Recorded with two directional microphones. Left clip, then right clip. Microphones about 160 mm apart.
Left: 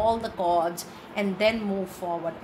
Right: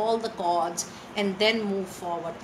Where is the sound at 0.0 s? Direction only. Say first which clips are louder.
Left 1 dB; 50° left (ahead or behind).